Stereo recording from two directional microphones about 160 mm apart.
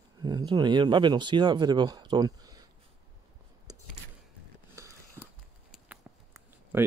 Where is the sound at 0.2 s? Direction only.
25° right (ahead or behind).